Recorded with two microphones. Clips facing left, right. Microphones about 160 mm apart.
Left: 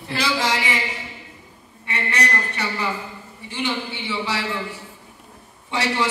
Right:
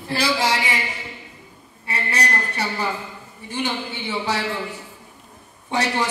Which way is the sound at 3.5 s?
45° right (ahead or behind).